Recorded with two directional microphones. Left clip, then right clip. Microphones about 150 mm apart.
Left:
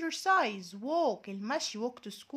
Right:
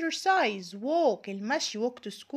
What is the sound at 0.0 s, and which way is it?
Speech, 10° right (ahead or behind).